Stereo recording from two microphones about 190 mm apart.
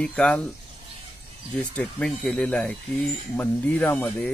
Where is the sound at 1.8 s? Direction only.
5° left (ahead or behind).